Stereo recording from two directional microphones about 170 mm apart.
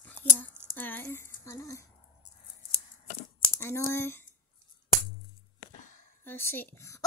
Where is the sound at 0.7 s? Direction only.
10° left (ahead or behind).